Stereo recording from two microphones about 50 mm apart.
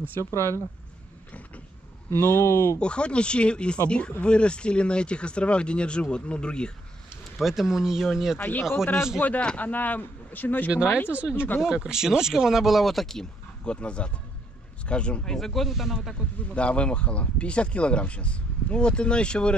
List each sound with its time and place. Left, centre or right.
2.0 s speech: left
2.8 s speech: left
7.3 s speech: centre
8.4 s speech: left
8.7 s speech: left
9.2 s speech: left
10.7 s speech: right
11.3 s speech: left
11.6 s speech: centre
13.7 s speech: left
15.3 s speech: centre
16.5 s speech: left